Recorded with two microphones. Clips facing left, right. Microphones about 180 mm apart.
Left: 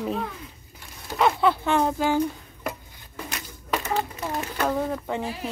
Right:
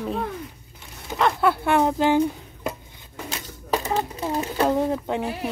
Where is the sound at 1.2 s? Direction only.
5° right (ahead or behind).